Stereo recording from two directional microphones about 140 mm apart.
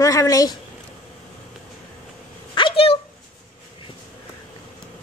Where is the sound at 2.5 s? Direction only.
40° left (ahead or behind).